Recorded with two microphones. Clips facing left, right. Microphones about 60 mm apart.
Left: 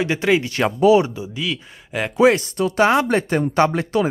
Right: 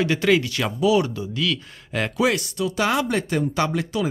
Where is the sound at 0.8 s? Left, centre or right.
Left.